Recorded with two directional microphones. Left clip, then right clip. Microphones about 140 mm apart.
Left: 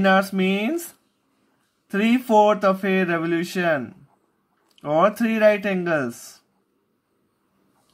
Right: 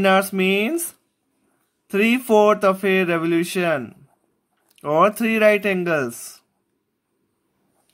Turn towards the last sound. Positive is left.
turn(degrees=-40)  # may be behind; listen again after turning